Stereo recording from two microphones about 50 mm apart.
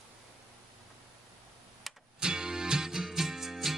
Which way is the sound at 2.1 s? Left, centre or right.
Centre.